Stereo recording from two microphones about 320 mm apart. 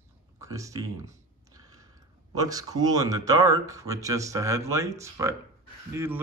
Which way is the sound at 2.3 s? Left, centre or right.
Centre.